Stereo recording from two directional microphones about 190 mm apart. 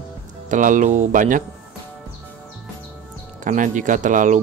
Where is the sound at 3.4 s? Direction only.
45° right (ahead or behind).